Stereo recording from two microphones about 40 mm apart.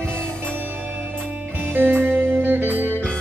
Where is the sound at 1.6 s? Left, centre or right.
Right.